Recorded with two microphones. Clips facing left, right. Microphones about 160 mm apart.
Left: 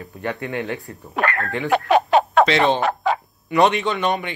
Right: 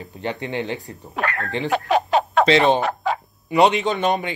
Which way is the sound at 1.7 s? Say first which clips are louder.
Left 3 dB; 65° left (ahead or behind).